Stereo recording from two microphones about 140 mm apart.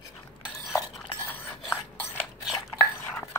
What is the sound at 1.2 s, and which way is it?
Filing, 15° left (ahead or behind).